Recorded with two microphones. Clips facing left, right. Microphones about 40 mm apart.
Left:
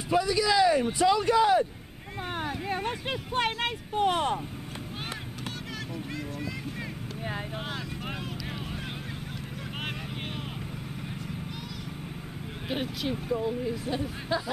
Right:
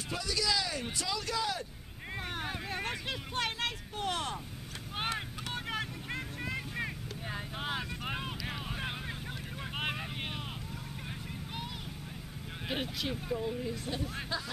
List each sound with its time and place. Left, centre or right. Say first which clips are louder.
0.1 s speech: left 9 dB; centre
2.6 s vehicle: left 6 dB; centre
3.1 s speech: left 6 dB; left
5.7 s vehicle: left 1 dB; right
7.5 s vehicle: left 1 dB; centre
12.6 s speech: left 4 dB; centre